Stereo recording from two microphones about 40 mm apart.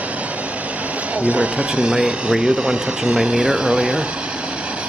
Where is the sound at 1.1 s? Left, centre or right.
Right.